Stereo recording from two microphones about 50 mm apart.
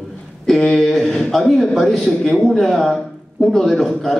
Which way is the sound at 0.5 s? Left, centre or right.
Centre.